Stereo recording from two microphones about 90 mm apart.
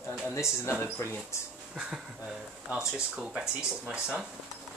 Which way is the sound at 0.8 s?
25° left (ahead or behind).